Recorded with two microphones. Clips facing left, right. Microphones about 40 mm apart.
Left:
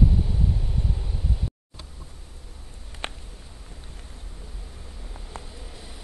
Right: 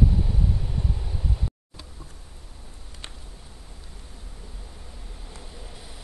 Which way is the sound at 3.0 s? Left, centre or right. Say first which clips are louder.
Left 9 dB; left.